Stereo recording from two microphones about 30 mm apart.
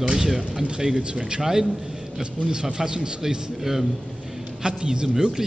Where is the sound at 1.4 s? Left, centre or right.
Centre.